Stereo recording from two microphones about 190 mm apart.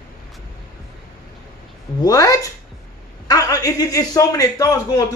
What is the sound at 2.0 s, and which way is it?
A man's voice, 20° left (ahead or behind).